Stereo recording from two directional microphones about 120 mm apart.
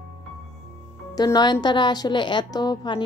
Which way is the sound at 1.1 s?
35° left (ahead or behind).